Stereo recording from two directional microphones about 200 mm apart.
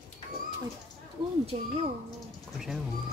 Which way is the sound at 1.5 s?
30° right (ahead or behind).